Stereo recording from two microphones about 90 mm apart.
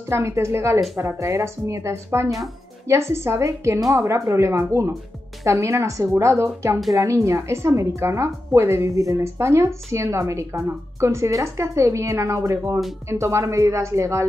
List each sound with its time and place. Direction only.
0.1 s a woman's voice: 30° right (ahead or behind)